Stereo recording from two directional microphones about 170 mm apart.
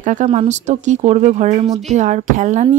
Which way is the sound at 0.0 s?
45° right (ahead or behind).